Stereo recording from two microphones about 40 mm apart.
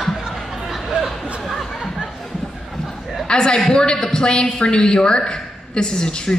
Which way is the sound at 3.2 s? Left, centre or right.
Left.